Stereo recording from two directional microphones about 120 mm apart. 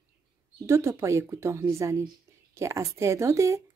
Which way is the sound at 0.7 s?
25° right (ahead or behind).